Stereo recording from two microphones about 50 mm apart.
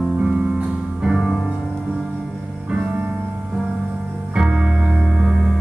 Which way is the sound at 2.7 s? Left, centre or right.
Right.